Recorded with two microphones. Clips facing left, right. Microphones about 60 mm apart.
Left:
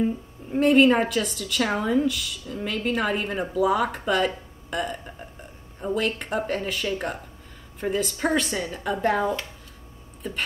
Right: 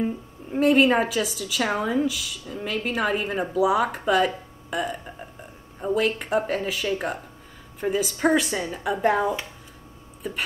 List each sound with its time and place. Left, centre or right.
0.0 s speech: centre